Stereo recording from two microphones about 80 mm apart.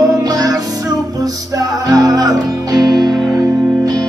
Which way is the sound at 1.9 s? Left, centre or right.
Right.